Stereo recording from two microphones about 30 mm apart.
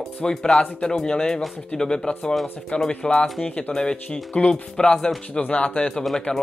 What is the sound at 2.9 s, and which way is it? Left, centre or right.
Speech, left.